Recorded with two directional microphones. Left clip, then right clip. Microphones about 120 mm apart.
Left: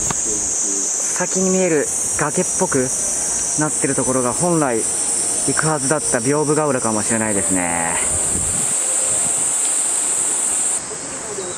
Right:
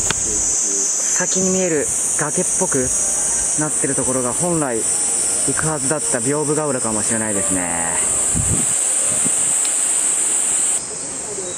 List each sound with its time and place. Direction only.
1.2 s cricket: 15° left (ahead or behind)
4.1 s speech: 20° left (ahead or behind)
4.5 s cricket: 15° left (ahead or behind)